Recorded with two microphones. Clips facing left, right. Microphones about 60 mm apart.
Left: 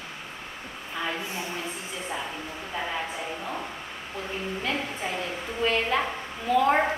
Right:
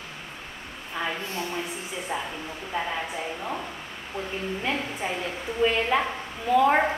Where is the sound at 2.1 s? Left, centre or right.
Centre.